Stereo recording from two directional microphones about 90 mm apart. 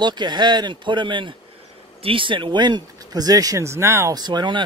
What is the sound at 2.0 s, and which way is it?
Speech, 75° right (ahead or behind).